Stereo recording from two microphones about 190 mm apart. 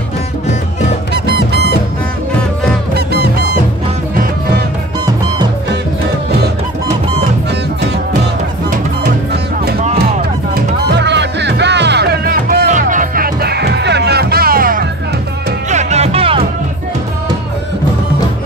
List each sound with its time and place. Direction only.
10.5 s music: 65° right (ahead or behind)
15.7 s music: 35° right (ahead or behind)